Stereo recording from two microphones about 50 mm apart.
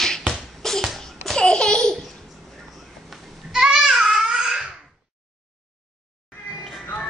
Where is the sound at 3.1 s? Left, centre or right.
Centre.